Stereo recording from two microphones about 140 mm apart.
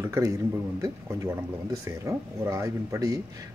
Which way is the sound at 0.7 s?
20° right (ahead or behind).